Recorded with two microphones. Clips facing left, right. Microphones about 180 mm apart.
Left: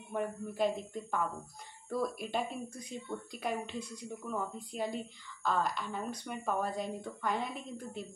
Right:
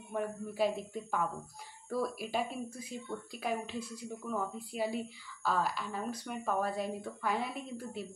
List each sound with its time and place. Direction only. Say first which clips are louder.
0.1 s speech: even; 5° right (ahead or behind)